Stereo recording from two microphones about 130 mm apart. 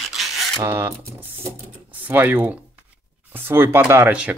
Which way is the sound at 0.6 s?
15° right (ahead or behind).